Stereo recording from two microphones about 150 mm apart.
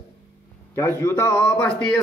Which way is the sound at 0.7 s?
20° left (ahead or behind).